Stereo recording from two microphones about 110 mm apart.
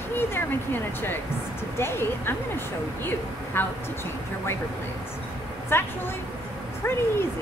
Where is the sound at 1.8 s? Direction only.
20° left (ahead or behind).